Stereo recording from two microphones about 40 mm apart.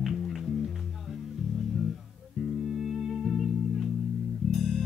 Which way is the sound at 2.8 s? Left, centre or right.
Centre.